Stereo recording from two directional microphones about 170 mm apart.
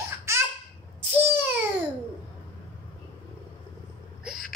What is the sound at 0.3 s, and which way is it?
Baby laughter, 15° right (ahead or behind).